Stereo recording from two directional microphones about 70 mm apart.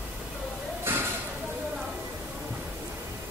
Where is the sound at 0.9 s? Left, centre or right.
Right.